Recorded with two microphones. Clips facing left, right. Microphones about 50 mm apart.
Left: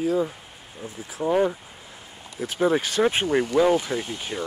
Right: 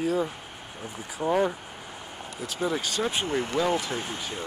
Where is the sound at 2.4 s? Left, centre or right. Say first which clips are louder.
Left 7 dB; left.